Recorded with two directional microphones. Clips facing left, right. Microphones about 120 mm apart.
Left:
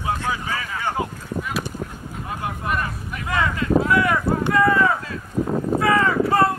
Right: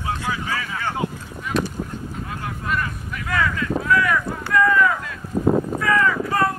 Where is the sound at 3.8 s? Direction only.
25° left (ahead or behind).